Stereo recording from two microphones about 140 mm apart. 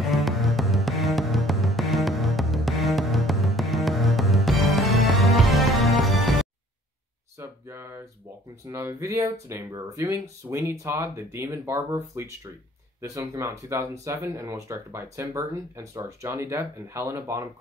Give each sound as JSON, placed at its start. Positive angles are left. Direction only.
{"t": 0.0, "sound": "music", "side_deg": 0}
{"t": 7.3, "sound": "a sound", "side_deg": -20}
{"t": 8.6, "sound": "speech", "side_deg": -20}